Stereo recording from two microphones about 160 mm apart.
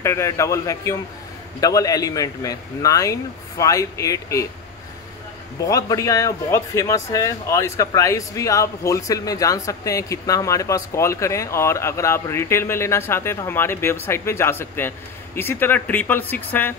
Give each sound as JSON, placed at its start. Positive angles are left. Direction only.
{"t": 0.0, "sound": "speech", "side_deg": 15}
{"t": 5.7, "sound": "a man's voice", "side_deg": 20}